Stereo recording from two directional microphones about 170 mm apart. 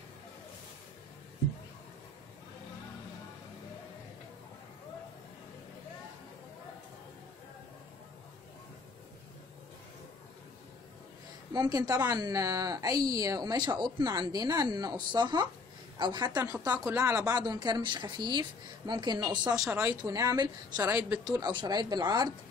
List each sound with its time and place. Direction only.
11.5 s a woman's voice: 25° right (ahead or behind)
19.5 s speech: 5° right (ahead or behind)
20.1 s a woman's voice: 20° right (ahead or behind)